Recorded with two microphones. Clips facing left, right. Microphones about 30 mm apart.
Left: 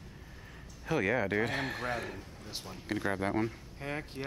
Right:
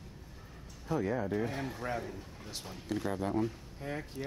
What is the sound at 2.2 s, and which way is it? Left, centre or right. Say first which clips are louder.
A man's voice: left 1 dB; centre.